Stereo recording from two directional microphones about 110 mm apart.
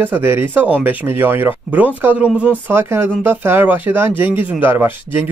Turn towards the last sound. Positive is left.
turn(degrees=-20)  # may be behind; listen again after turning